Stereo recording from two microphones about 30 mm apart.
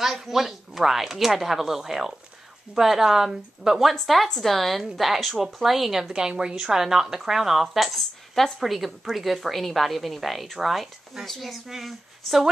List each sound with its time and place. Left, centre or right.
0.0 s speech: centre
4.0 s a woman's voice: centre
6.1 s a woman's voice: right
6.6 s a woman's voice: centre
11.2 s a woman's voice: centre